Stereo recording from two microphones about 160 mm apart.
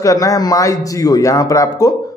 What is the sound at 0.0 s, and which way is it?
A man's voice, 20° left (ahead or behind).